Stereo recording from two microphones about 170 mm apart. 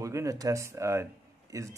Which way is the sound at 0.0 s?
20° right (ahead or behind).